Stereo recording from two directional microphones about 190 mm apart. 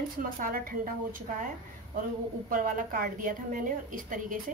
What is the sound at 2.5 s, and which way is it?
A woman's voice, 45° right (ahead or behind).